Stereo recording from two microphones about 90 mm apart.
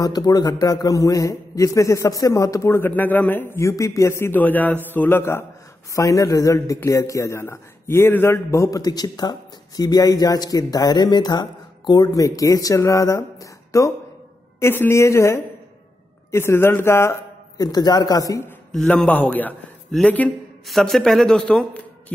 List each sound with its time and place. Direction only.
0.0 s a man's voice: 45° left (ahead or behind); by 2.9 s 30° left (ahead or behind)
2.9 s a man's voice: 20° left (ahead or behind)
3.5 s a man's voice: 35° left (ahead or behind)
5.9 s a man's voice: 35° left (ahead or behind)
17.6 s a man's voice: 45° left (ahead or behind)
18.9 s a man's voice: 15° left (ahead or behind)
20.6 s a man's voice: centre (ahead or behind)